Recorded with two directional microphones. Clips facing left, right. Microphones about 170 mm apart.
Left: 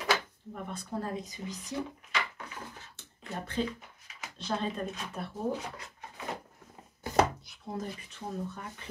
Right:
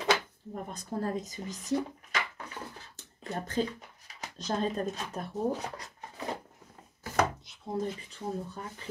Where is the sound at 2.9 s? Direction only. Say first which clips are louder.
Right 3 dB; 40° right (ahead or behind).